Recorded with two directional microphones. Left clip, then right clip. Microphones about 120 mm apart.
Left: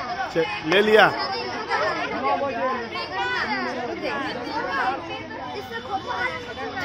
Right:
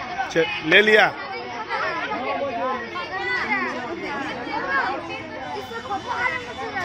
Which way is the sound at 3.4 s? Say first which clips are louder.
Right 2 dB; 5° right (ahead or behind).